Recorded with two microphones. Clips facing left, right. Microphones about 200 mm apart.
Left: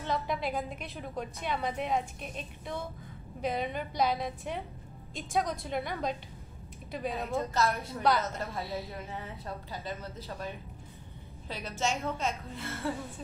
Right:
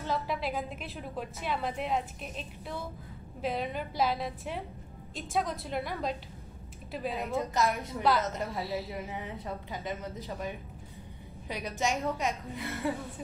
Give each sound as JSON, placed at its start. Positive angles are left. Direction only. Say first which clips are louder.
{"t": 0.0, "sound": "a woman's voice", "louder": "even", "side_deg": 0}
{"t": 7.5, "sound": "a woman's voice", "louder": "right 1 dB", "side_deg": -15}
{"t": 8.0, "sound": "a woman's voice", "louder": "right 1 dB", "side_deg": 0}
{"t": 9.1, "sound": "a woman's voice", "louder": "right 2 dB", "side_deg": -15}